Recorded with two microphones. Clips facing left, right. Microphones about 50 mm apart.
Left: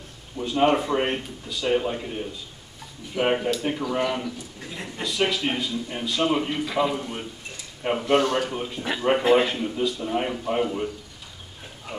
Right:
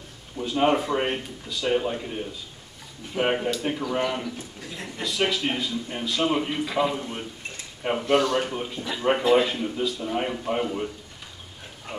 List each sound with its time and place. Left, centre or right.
0.4 s a man's voice: centre
8.1 s speech: left
8.5 s a man's voice: centre